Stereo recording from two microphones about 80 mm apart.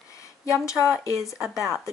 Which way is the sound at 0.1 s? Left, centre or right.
Left.